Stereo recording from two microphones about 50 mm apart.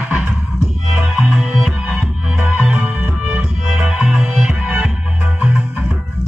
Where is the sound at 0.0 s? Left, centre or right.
Right.